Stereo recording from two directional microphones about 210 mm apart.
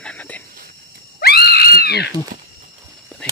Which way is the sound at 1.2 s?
50° left (ahead or behind).